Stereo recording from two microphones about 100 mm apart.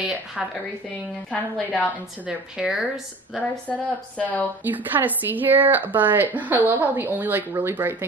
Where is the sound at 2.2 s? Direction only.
5° right (ahead or behind).